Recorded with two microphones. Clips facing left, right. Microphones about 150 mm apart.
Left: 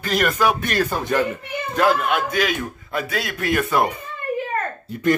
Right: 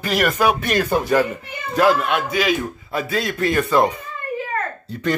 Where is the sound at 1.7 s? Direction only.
Centre (ahead or behind).